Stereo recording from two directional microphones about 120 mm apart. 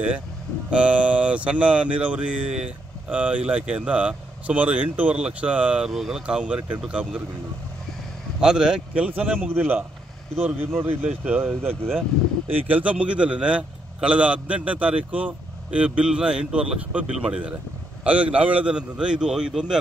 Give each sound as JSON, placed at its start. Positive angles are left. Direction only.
{"t": 0.7, "sound": "a man's voice", "side_deg": -10}
{"t": 8.4, "sound": "a man's voice", "side_deg": -5}